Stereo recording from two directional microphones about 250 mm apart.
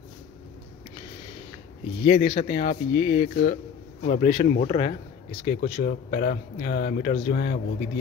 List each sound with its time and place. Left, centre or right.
2.0 s speech: left